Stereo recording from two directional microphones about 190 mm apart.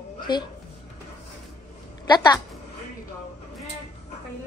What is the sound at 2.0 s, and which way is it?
Speech, 20° left (ahead or behind).